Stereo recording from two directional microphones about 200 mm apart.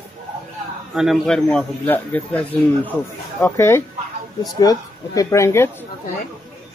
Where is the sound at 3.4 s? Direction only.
10° left (ahead or behind).